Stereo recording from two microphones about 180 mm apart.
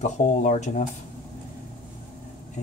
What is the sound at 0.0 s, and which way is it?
Speech, 40° left (ahead or behind).